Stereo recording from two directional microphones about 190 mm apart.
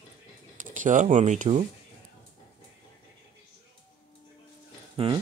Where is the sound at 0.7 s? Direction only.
40° right (ahead or behind).